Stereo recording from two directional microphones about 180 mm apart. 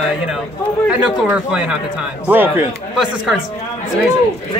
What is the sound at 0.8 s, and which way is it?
Speech, 5° right (ahead or behind).